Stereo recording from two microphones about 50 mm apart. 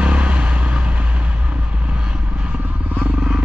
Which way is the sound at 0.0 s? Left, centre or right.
Right.